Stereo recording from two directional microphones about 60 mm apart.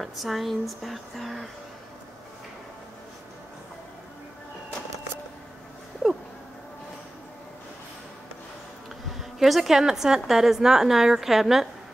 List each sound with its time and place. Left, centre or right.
0.0 s speech: centre
6.0 s a sound: centre
9.4 s a woman's voice: centre